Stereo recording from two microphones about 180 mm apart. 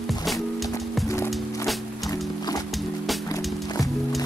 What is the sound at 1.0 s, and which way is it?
Music, 15° left (ahead or behind).